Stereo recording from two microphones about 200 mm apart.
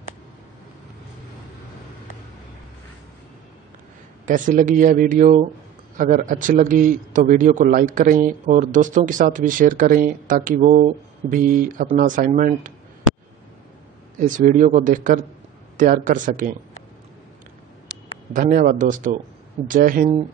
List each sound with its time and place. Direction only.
4.3 s a man's voice: 40° right (ahead or behind)
14.1 s a man's voice: 40° right (ahead or behind)
18.3 s a man's voice: 45° right (ahead or behind)